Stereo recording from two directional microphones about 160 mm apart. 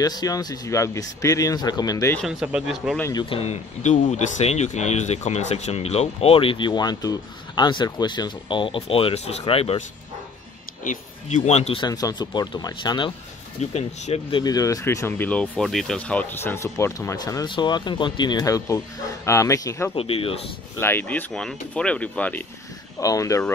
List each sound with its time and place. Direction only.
0.0 s speech: 25° left (ahead or behind)
2.4 s speech: 5° right (ahead or behind)
3.0 s speech: 25° left (ahead or behind)
10.8 s speech: 50° left (ahead or behind)
11.8 s speech: 25° left (ahead or behind)
13.6 s speech: 40° left (ahead or behind)
14.4 s speech: 20° left (ahead or behind)
19.9 s speech: 35° left (ahead or behind)
20.8 s speech: 10° left (ahead or behind)
22.9 s speech: 20° left (ahead or behind)